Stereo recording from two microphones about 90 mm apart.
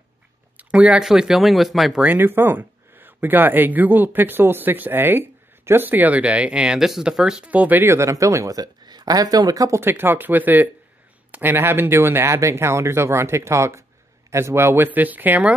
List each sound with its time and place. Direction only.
0.6 s speech: 15° right (ahead or behind)
2.0 s speech: 20° right (ahead or behind); by 9.8 s 40° right (ahead or behind)
9.8 s speech: 25° right (ahead or behind)